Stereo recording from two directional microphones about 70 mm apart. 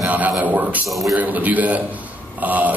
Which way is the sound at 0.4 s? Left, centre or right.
Right.